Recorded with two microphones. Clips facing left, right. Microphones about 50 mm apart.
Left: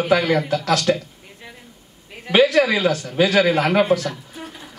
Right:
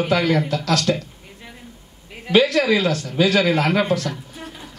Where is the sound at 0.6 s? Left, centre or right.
Left.